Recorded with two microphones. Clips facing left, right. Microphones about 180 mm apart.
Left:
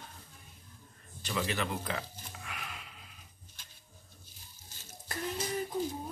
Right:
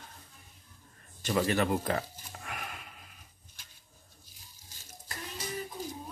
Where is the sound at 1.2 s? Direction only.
45° right (ahead or behind).